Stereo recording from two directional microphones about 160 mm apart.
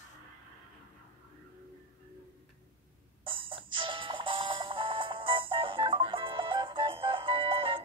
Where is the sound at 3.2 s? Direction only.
35° right (ahead or behind).